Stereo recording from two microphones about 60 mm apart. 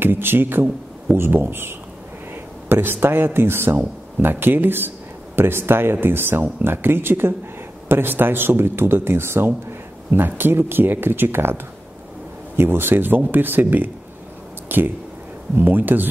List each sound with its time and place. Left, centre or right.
0.0 s speech: right